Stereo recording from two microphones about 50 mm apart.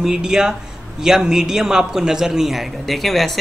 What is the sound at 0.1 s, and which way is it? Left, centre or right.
A man's voice, centre.